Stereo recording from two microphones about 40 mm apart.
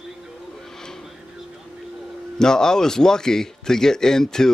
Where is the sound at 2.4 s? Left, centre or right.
Centre.